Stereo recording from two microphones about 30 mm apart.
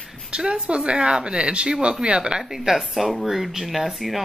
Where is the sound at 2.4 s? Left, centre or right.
Centre.